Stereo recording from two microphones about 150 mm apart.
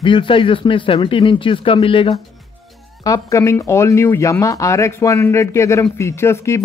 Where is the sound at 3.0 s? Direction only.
20° left (ahead or behind).